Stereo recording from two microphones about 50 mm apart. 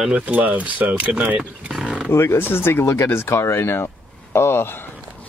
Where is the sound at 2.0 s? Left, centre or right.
Left.